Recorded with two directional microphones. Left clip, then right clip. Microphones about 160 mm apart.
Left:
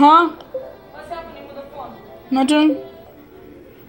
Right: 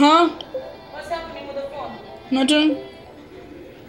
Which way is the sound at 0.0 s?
20° left (ahead or behind).